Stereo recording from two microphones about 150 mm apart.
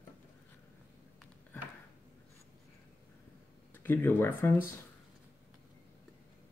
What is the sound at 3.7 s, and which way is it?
Speech, 15° left (ahead or behind).